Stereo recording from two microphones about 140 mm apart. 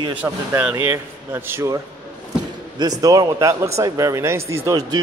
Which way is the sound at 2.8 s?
25° right (ahead or behind).